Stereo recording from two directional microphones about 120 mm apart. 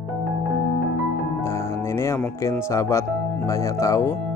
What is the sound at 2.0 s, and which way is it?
Speech, 25° left (ahead or behind).